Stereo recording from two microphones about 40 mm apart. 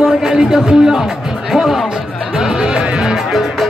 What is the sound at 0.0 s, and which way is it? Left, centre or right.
Music, centre.